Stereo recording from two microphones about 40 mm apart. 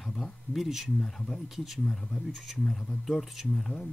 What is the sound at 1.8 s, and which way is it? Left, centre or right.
Speech, centre.